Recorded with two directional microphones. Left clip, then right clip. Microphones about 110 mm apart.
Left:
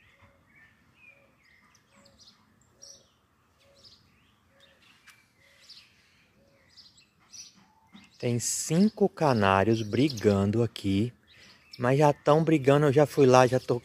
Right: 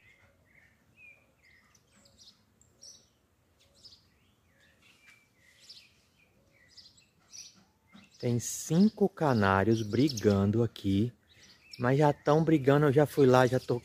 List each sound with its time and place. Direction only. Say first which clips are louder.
5.7 s bird: left 1 dB; 15° right (ahead or behind)
7.9 s speech: left 3 dB; 5° left (ahead or behind)